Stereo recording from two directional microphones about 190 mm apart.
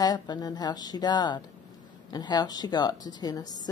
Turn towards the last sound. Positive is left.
turn(degrees=20)  # may be behind; listen again after turning